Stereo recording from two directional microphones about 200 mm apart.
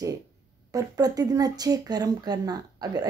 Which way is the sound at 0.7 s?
20° right (ahead or behind).